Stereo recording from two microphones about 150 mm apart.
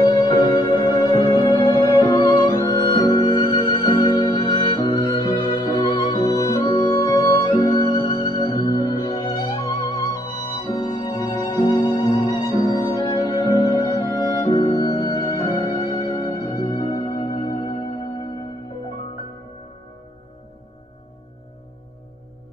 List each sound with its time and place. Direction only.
0.3 s music: 30° left (ahead or behind)